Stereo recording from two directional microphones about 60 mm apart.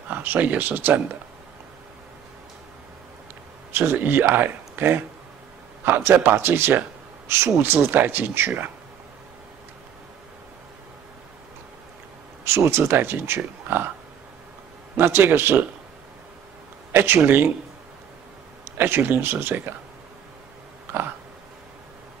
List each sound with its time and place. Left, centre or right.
0.1 s speech: right
3.7 s speech: right
7.5 s speech: right
12.4 s speech: right
15.0 s speech: right
16.9 s speech: right
18.8 s speech: right